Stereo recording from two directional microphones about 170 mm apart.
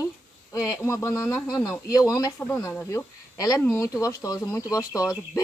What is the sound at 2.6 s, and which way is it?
Speech, 15° left (ahead or behind).